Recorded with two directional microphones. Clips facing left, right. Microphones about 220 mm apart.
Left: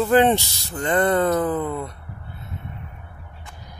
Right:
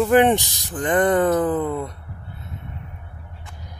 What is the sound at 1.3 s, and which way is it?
Speech, 5° right (ahead or behind).